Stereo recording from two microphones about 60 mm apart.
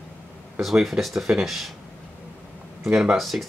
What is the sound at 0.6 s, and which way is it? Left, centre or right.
Speech, centre.